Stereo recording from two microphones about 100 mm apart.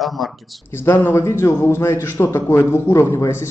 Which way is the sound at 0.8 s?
25° left (ahead or behind).